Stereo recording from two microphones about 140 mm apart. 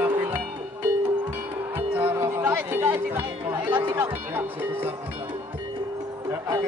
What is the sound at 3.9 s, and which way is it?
Speech, 15° right (ahead or behind).